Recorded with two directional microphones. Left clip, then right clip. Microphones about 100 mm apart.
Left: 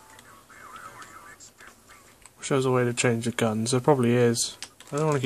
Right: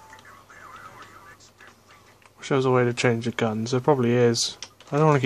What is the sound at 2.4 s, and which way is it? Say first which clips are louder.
Speech: right 3 dB; 5° right (ahead or behind).